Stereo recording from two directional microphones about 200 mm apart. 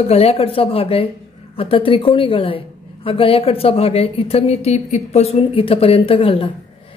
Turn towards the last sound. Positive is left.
turn(degrees=25)  # may be behind; listen again after turning